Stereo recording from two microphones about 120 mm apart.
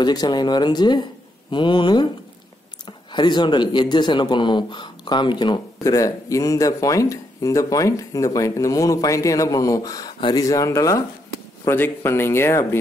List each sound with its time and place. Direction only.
0.0 s speech: 35° left (ahead or behind)
3.1 s speech: 40° left (ahead or behind); by 12.6 s 20° left (ahead or behind)